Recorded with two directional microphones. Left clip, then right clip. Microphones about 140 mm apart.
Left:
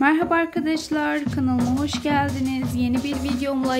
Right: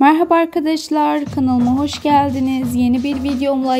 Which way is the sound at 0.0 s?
35° right (ahead or behind).